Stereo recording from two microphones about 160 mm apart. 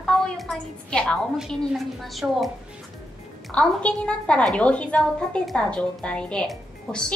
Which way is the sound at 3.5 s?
5° left (ahead or behind).